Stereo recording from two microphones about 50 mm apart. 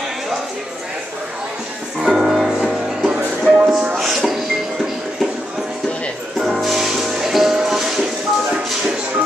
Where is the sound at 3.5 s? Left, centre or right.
Centre.